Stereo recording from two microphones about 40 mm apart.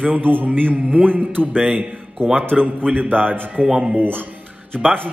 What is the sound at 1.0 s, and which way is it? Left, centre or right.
A man's voice, right.